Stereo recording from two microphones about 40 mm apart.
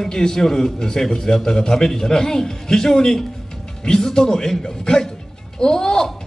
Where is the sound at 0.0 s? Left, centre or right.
Centre.